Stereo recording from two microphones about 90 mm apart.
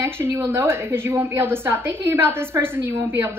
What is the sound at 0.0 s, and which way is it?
A woman's voice, 25° right (ahead or behind).